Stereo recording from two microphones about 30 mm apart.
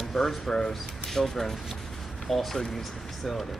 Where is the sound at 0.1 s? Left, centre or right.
Centre.